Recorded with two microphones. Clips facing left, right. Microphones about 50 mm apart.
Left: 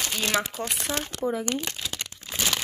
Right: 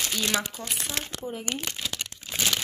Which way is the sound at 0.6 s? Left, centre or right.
Left.